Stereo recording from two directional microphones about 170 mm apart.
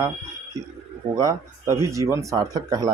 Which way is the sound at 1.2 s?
20° right (ahead or behind).